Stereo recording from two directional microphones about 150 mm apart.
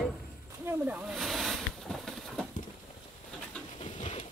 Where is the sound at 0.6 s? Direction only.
10° right (ahead or behind).